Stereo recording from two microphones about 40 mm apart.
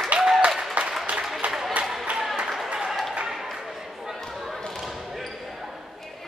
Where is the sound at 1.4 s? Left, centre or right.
Right.